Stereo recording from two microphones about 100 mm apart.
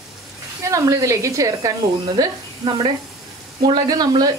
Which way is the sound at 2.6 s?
50° right (ahead or behind).